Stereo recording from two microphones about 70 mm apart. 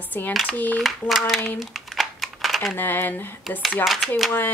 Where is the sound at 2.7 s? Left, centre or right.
Left.